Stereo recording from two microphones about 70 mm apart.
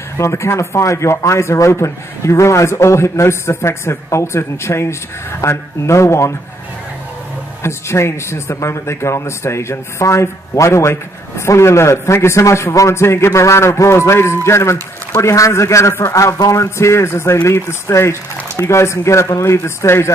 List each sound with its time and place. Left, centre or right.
0.2 s a man's voice: left
7.6 s a man's voice: left
16.6 s a man's voice: left